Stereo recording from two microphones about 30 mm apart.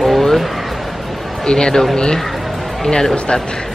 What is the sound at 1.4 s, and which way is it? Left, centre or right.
Speech, left.